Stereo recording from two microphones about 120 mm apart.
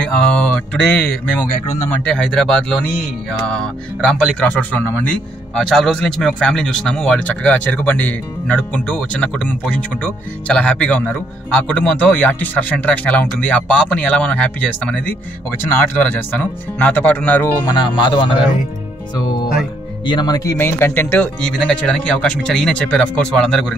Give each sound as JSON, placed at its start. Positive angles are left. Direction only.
{"t": 0.2, "sound": "speech", "side_deg": 10}
{"t": 17.7, "sound": "speech", "side_deg": 40}
{"t": 20.1, "sound": "speech", "side_deg": 35}
{"t": 20.5, "sound": "speech", "side_deg": 20}
{"t": 21.4, "sound": "speech", "side_deg": 5}